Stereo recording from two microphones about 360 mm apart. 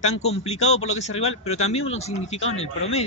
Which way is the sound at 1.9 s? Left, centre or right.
Centre.